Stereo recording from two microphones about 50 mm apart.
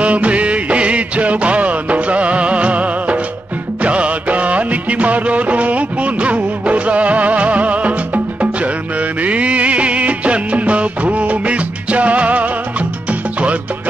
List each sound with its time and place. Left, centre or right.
0.0 s music: right